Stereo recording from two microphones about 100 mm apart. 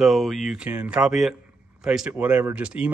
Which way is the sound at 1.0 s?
5° right (ahead or behind).